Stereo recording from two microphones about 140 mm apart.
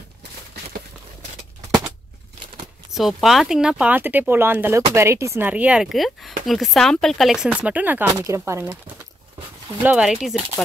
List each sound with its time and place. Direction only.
2.9 s speech: centre (ahead or behind); by 8.7 s 20° right (ahead or behind)
9.8 s speech: 5° right (ahead or behind)